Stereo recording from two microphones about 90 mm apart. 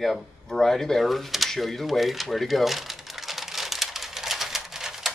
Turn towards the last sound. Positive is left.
turn(degrees=-5)  # may be behind; listen again after turning